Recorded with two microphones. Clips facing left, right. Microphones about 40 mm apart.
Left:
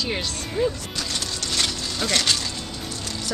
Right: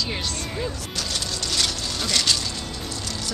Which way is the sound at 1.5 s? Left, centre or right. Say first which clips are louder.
Left 1 dB; left.